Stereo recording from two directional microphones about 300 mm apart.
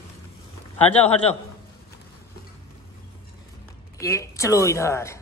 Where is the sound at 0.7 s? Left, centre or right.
Centre.